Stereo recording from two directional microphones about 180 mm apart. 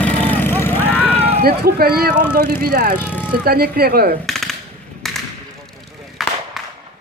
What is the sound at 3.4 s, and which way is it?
Speech, 55° right (ahead or behind).